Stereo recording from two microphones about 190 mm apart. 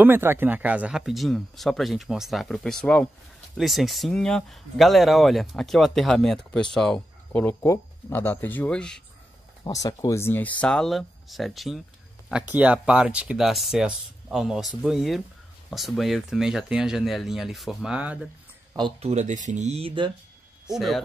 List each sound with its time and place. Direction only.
0.0 s speech: 10° right (ahead or behind); by 9.0 s 5° left (ahead or behind)
9.7 s speech: 20° left (ahead or behind); by 18.8 s 5° right (ahead or behind)
18.8 s speech: 30° right (ahead or behind)
20.7 s speech: centre (ahead or behind)